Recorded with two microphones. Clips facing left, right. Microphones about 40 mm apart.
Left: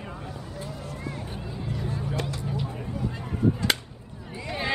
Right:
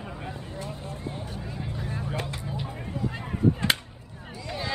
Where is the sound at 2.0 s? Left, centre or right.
Centre.